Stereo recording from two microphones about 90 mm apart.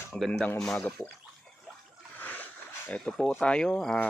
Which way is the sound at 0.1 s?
10° left (ahead or behind).